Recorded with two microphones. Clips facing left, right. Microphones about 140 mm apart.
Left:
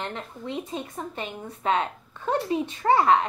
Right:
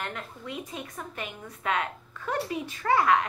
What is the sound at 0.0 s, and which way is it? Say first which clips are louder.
A woman's voice: left 3 dB; 25° left (ahead or behind).